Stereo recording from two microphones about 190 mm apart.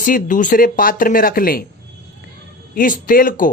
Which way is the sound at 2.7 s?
45° left (ahead or behind).